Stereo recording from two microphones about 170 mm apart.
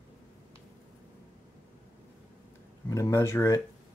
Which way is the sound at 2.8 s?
20° left (ahead or behind).